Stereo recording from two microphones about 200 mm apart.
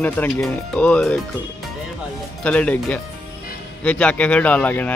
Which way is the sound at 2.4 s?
5° left (ahead or behind).